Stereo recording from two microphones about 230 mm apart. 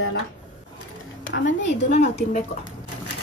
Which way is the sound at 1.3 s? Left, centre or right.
Left.